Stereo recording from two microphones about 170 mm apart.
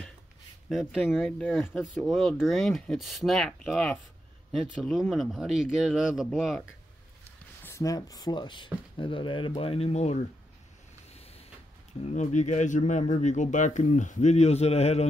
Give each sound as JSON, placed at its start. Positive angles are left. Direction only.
{"t": 0.7, "sound": "speech", "side_deg": 0}
{"t": 7.6, "sound": "speech", "side_deg": 20}
{"t": 12.0, "sound": "speech", "side_deg": 45}